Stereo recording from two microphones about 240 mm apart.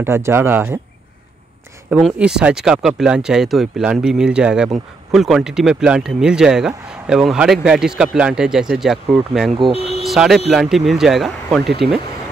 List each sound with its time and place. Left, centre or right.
0.0 s speech: centre
1.9 s speech: centre
9.8 s a sound: left
10.0 s speech: centre